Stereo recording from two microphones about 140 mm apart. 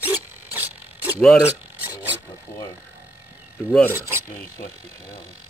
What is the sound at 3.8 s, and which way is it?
Filing, 15° right (ahead or behind).